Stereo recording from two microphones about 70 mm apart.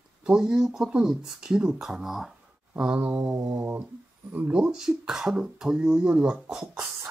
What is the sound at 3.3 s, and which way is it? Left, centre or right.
Mantra, right.